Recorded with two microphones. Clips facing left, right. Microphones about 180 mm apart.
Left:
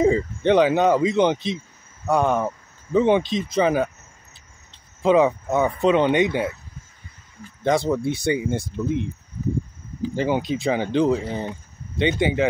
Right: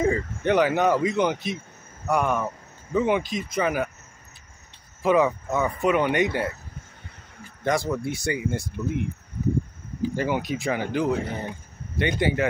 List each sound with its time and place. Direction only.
0.0 s speech: 20° left (ahead or behind)
5.0 s speech: 20° left (ahead or behind)
7.6 s speech: 25° left (ahead or behind)
10.1 s speech: 25° left (ahead or behind)